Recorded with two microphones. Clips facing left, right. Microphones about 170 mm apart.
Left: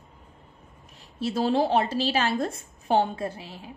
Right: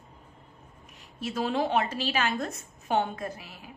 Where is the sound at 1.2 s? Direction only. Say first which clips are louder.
Left 5 dB; 30° left (ahead or behind).